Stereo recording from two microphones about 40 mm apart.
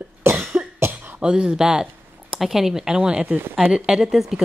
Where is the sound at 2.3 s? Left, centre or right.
Centre.